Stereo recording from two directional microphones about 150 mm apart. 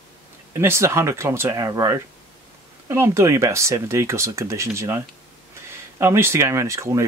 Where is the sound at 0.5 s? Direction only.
15° right (ahead or behind).